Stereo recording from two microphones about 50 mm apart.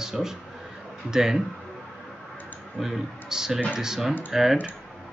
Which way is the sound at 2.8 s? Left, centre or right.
Centre.